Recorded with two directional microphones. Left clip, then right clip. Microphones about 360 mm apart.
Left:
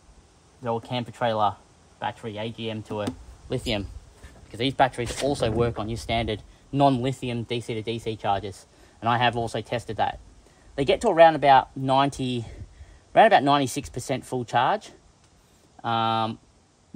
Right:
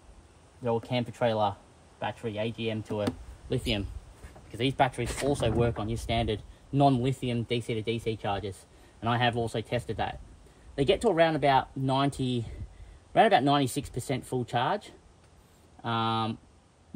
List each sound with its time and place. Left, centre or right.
0.7 s speech: centre
3.4 s speech: centre